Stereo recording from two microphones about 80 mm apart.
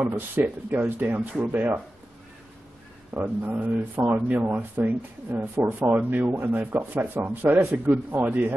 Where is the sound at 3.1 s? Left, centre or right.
Right.